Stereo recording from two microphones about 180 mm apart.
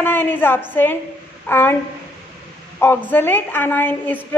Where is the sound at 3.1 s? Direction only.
10° left (ahead or behind).